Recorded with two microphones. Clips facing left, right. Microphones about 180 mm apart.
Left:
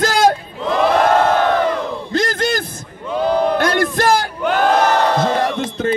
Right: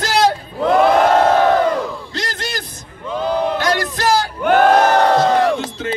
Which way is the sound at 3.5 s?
55° left (ahead or behind).